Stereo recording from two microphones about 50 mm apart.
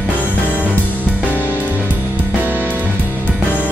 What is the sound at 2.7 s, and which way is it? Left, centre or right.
Music, left.